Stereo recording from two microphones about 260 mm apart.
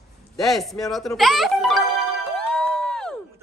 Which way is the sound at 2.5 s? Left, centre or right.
Centre.